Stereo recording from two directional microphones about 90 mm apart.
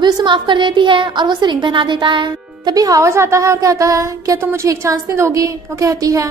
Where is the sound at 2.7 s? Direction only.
40° right (ahead or behind).